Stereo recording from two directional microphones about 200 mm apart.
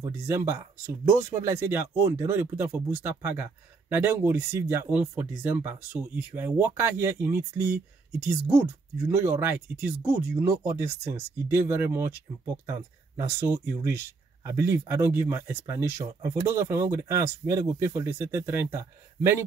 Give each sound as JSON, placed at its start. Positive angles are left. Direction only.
{"t": 0.0, "sound": "speech", "side_deg": -15}